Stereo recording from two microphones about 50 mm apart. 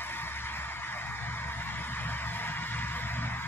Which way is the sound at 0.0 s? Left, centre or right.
Left.